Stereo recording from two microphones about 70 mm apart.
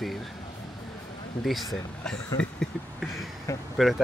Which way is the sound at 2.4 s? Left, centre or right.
Centre.